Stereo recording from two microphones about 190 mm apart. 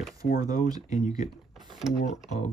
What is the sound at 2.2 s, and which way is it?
Speech, 40° left (ahead or behind).